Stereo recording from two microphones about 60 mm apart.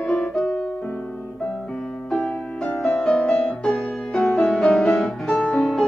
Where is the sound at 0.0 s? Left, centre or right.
Centre.